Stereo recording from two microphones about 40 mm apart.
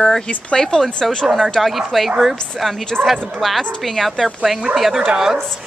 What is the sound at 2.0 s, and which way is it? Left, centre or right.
Speech, centre.